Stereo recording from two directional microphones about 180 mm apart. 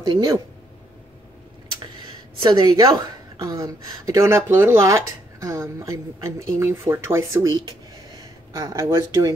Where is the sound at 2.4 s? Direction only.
25° right (ahead or behind).